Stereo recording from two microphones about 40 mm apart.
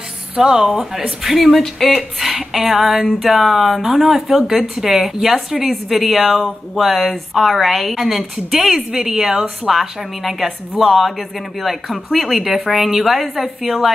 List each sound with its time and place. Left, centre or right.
0.4 s speech: centre
1.4 s speech: centre
9.7 s speech: centre